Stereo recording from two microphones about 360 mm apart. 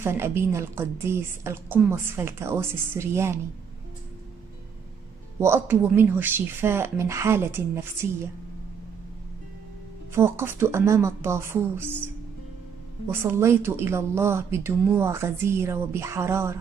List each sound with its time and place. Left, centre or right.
0.0 s speech: centre
5.4 s speech: centre
10.1 s speech: centre
13.1 s speech: centre